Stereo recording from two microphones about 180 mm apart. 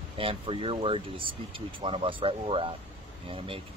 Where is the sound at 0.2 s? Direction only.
30° right (ahead or behind).